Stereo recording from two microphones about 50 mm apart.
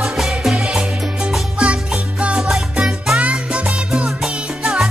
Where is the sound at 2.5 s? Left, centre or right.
Centre.